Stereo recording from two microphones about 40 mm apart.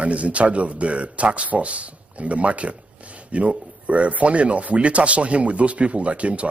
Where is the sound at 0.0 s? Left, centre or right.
Right.